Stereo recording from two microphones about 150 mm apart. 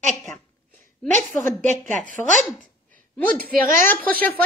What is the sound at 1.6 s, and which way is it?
Speech, 55° right (ahead or behind).